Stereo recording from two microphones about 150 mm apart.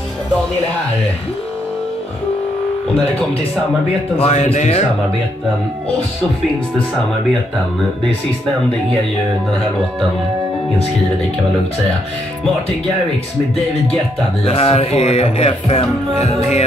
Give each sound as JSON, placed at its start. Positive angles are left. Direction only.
{"t": 4.2, "sound": "speech", "side_deg": 45}
{"t": 14.4, "sound": "speech", "side_deg": 40}